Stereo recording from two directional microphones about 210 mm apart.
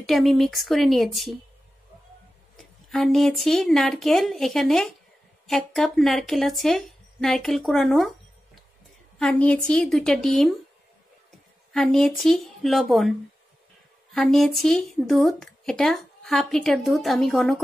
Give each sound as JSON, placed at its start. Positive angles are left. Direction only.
{"t": 0.0, "sound": "speech", "side_deg": 0}
{"t": 2.5, "sound": "speech", "side_deg": 0}
{"t": 9.2, "sound": "speech", "side_deg": 5}
{"t": 11.7, "sound": "speech", "side_deg": 0}
{"t": 14.1, "sound": "speech", "side_deg": 0}